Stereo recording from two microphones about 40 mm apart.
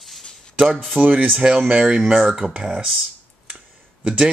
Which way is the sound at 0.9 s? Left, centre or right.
Right.